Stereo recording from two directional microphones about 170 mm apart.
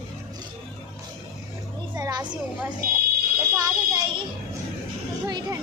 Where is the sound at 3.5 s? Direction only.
20° right (ahead or behind).